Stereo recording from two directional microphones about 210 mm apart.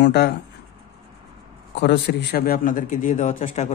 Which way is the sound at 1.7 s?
55° left (ahead or behind).